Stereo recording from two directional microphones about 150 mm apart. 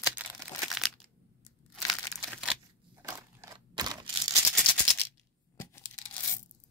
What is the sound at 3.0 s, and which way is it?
Crushing, 20° right (ahead or behind).